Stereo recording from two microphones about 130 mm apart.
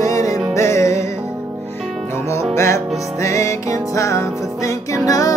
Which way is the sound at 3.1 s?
25° left (ahead or behind).